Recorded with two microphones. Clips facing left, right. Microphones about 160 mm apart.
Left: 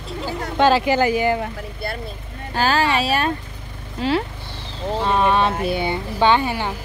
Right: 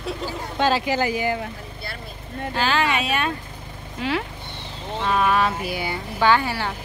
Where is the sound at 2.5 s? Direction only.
40° left (ahead or behind).